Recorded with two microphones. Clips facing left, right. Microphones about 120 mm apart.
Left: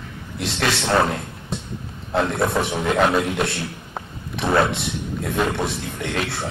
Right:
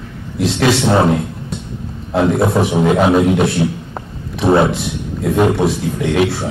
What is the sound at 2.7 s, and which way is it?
Speech, 25° right (ahead or behind).